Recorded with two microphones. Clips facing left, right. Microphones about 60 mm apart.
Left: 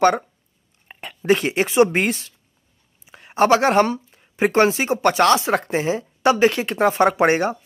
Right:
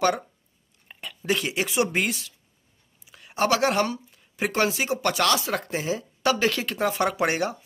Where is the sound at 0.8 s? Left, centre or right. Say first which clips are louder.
Left 9 dB; left.